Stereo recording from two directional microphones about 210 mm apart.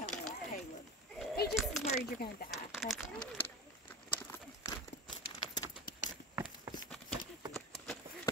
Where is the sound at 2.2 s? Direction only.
50° left (ahead or behind).